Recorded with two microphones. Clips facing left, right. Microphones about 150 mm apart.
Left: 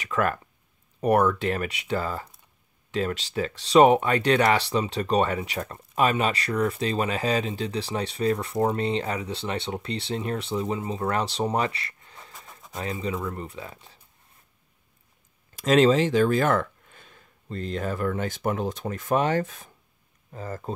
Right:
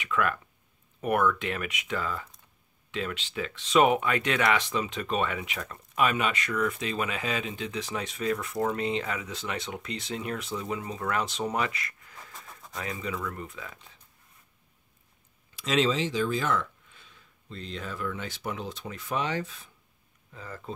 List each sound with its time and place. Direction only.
0.0 s speech: 40° left (ahead or behind)
15.5 s speech: 50° left (ahead or behind)